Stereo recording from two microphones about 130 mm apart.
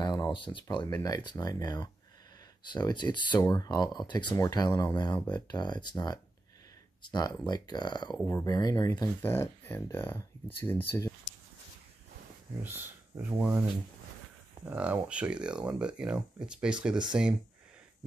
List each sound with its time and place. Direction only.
0.0 s speech: 35° left (ahead or behind)
9.2 s speech: 15° left (ahead or behind)
12.6 s speech: 15° right (ahead or behind)